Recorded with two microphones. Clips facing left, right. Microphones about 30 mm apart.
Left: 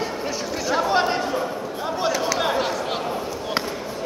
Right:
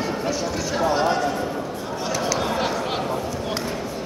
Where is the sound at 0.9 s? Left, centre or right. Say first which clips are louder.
Right 2 dB; left.